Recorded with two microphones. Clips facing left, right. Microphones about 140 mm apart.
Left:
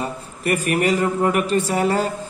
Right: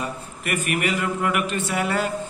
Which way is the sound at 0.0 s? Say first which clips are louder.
Left 5 dB; 35° left (ahead or behind).